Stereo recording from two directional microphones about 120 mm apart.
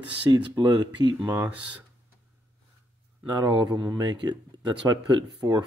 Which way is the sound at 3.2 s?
35° right (ahead or behind).